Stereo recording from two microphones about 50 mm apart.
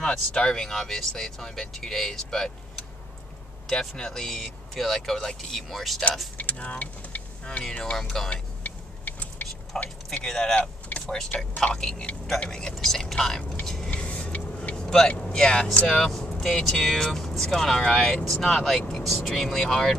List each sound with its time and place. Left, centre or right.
0.0 s speech: centre
3.6 s speech: centre
6.3 s speech: left
8.0 s speech: centre
8.3 s vehicle: left
9.7 s speech: centre
10.5 s vehicle: left
11.2 s speech: left
13.8 s vehicle: left
14.9 s speech: centre
18.2 s speech: centre